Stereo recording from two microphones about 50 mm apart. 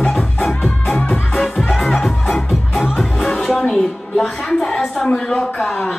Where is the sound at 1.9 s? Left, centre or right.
Centre.